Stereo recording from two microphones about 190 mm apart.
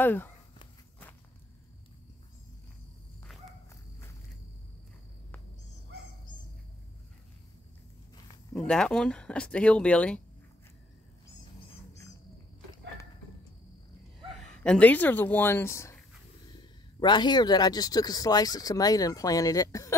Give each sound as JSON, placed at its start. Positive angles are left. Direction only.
{"t": 0.0, "sound": "speech", "side_deg": 10}
{"t": 8.6, "sound": "speech", "side_deg": 5}
{"t": 14.3, "sound": "speech", "side_deg": 5}
{"t": 17.0, "sound": "speech", "side_deg": 25}